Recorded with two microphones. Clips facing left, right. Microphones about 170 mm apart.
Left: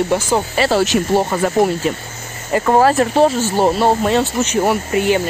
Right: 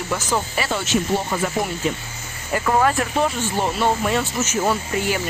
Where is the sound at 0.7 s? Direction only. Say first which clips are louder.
Left 6 dB; 45° left (ahead or behind).